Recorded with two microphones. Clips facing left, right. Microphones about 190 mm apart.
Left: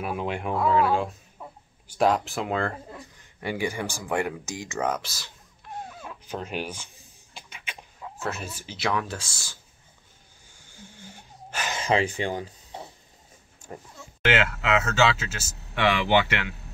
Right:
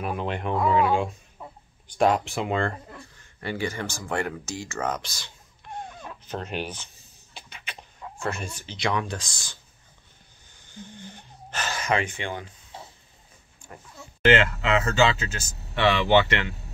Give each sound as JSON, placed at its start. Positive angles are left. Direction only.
{"t": 0.0, "sound": "speech", "side_deg": 5}
{"t": 2.9, "sound": "speech", "side_deg": 15}
{"t": 10.5, "sound": "wheeze", "side_deg": 10}
{"t": 11.7, "sound": "speech", "side_deg": 30}
{"t": 13.6, "sound": "oink", "side_deg": 40}
{"t": 14.2, "sound": "speech", "side_deg": 5}